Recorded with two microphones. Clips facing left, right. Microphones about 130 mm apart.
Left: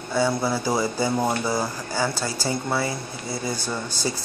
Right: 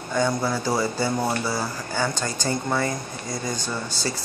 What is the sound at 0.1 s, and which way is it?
Speech, 10° left (ahead or behind).